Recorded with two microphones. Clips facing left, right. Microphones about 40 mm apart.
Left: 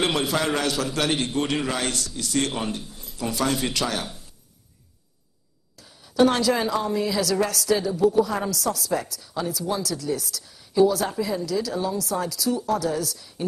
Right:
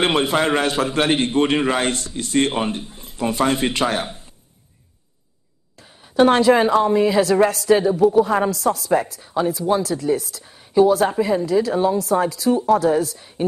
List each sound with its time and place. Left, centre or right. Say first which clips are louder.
0.0 s a woman's voice: right 5 dB; right
5.8 s a woman's voice: right 4 dB; right